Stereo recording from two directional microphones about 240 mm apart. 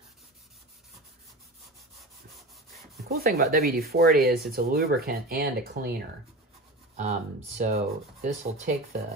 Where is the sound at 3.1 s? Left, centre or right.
Right.